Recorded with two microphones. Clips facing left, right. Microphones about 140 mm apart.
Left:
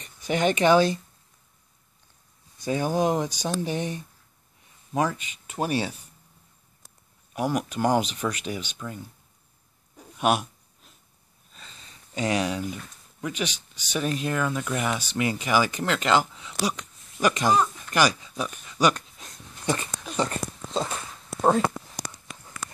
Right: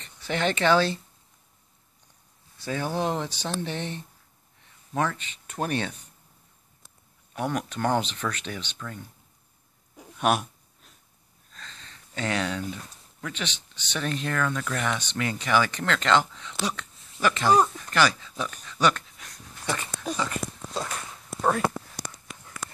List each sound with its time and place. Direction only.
0.0 s speech: 15° left (ahead or behind)
2.6 s speech: 15° left (ahead or behind)
7.3 s speech: 10° left (ahead or behind)
10.1 s a sound: centre (ahead or behind)
11.5 s speech: 10° left (ahead or behind)
19.1 s a sound: 20° left (ahead or behind)
20.2 s speech: 30° left (ahead or behind)